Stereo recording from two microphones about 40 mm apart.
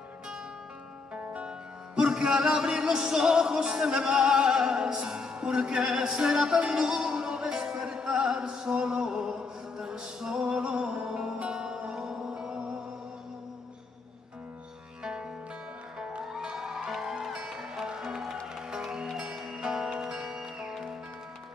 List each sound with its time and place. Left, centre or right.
1.1 s music: right
2.0 s music: centre
16.1 s music: right
19.2 s music: centre